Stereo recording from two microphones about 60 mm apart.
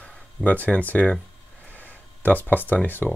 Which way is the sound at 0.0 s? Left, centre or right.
Left.